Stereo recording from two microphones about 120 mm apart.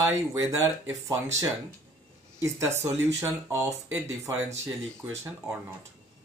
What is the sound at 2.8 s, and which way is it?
Speech, 20° right (ahead or behind).